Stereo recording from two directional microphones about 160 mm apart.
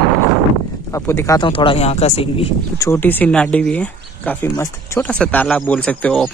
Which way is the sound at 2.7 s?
15° left (ahead or behind).